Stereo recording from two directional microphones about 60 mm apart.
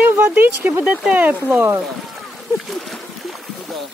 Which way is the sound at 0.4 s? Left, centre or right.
Right.